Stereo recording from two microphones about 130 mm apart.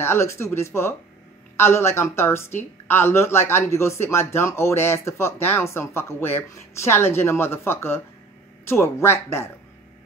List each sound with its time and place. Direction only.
0.0 s speech: 20° left (ahead or behind)